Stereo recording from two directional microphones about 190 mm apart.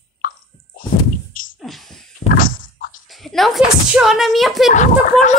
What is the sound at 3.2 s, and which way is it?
Speech, centre (ahead or behind).